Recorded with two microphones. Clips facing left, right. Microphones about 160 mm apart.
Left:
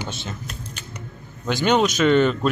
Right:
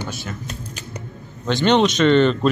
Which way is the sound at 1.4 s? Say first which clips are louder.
Right 3 dB; 5° left (ahead or behind).